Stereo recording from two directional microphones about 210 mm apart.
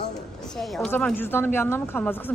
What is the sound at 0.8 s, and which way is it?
Speech, 5° left (ahead or behind).